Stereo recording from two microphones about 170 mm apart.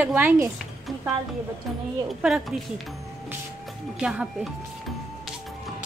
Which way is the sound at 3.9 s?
5° right (ahead or behind).